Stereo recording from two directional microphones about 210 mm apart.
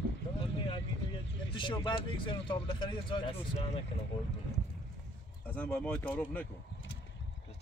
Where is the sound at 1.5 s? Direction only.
25° left (ahead or behind).